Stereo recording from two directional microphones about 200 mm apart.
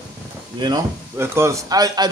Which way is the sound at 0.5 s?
20° right (ahead or behind).